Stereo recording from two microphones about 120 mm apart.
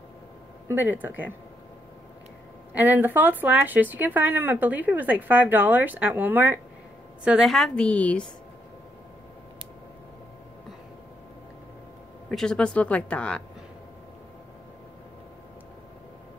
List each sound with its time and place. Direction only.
0.7 s speech: 15° right (ahead or behind)
2.7 s speech: 15° right (ahead or behind)
7.2 s speech: 5° right (ahead or behind)
12.3 s speech: 5° left (ahead or behind)